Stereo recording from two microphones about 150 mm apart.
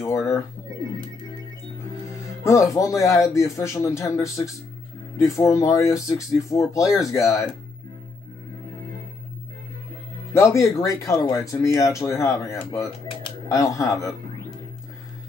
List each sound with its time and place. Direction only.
0.0 s speech: 20° left (ahead or behind)
2.4 s speech: 20° left (ahead or behind)
10.3 s speech: 20° left (ahead or behind)